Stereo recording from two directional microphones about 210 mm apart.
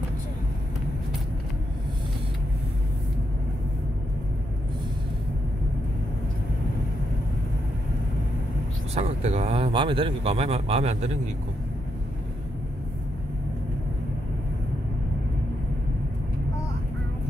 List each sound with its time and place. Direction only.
8.9 s speech: 30° right (ahead or behind)